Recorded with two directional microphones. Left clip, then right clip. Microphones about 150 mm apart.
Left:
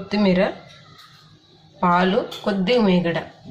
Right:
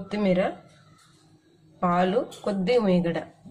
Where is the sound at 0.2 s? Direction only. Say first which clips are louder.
Left 4 dB; 65° right (ahead or behind).